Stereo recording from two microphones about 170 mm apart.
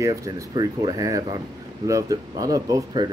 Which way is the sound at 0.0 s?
20° right (ahead or behind).